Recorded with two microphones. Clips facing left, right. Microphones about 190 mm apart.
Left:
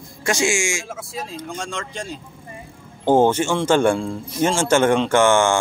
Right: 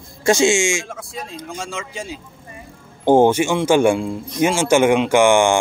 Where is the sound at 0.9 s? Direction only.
5° left (ahead or behind); by 5.5 s 15° right (ahead or behind).